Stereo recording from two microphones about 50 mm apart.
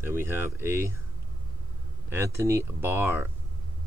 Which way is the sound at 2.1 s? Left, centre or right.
Right.